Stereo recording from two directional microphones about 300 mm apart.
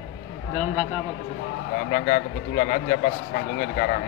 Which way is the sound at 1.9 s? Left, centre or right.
Left.